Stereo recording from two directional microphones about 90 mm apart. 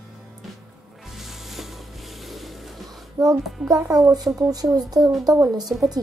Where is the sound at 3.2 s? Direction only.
35° right (ahead or behind).